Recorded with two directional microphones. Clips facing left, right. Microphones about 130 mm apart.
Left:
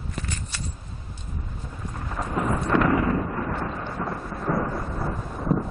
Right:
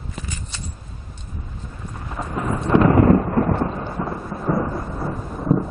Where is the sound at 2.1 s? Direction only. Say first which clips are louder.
Right 1 dB; 5° right (ahead or behind).